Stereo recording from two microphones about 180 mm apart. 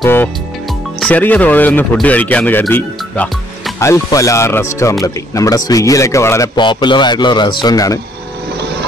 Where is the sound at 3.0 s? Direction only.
Centre (ahead or behind).